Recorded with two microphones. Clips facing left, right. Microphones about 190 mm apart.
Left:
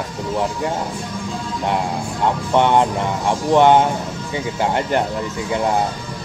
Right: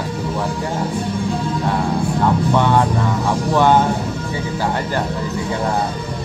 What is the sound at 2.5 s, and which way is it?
Speech, 20° left (ahead or behind).